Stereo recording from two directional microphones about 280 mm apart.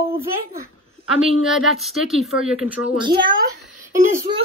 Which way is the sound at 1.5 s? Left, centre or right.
Centre.